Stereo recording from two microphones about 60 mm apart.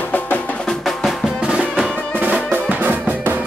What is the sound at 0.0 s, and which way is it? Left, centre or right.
Music, left.